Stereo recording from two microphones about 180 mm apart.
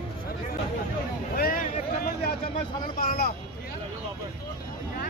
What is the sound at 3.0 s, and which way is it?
Speech, 55° left (ahead or behind).